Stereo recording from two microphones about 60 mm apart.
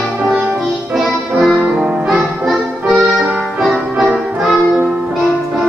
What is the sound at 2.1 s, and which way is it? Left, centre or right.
Music, centre.